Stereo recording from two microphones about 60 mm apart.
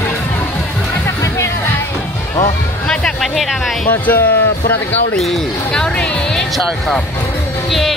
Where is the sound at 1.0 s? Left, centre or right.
Left.